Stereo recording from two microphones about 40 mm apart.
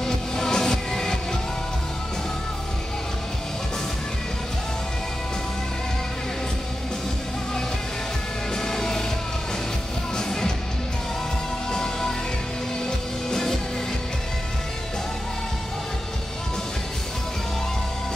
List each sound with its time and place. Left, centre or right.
0.0 s music: centre
8.5 s music: centre
10.1 s music: centre
11.7 s music: centre